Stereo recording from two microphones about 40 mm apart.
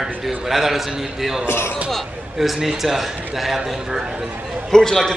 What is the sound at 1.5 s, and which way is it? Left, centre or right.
Speech, left.